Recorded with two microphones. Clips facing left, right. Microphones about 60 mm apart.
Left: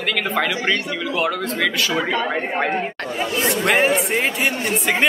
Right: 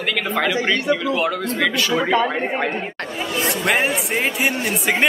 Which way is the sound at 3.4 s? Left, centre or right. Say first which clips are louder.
Left 2 dB; centre.